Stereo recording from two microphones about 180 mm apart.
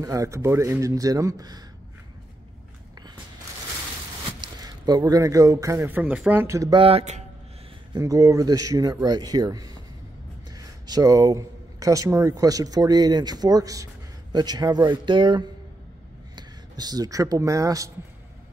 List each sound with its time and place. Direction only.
0.0 s speech: 20° right (ahead or behind)
4.3 s speech: 25° right (ahead or behind)
6.8 s speech: 35° right (ahead or behind)
7.9 s a man's voice: 15° right (ahead or behind)